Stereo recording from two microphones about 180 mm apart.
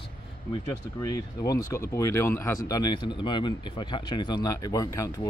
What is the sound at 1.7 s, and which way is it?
Speech, 15° left (ahead or behind).